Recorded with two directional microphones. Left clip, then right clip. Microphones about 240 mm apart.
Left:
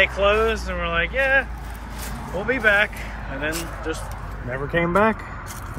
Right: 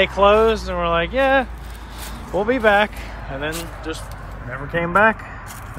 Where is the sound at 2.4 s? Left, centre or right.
Centre.